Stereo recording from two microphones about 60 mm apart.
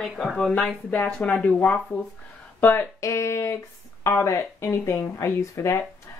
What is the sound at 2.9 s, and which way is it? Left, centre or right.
A woman's voice, left.